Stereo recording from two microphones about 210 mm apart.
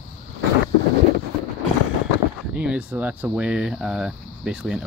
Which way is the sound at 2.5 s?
5° right (ahead or behind).